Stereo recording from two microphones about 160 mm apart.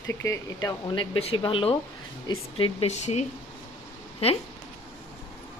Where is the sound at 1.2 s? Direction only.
35° left (ahead or behind).